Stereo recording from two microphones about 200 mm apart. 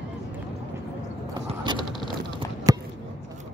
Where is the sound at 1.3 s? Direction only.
20° right (ahead or behind).